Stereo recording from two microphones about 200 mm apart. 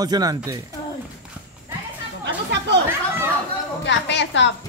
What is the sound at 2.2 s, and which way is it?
Chatter, 60° right (ahead or behind).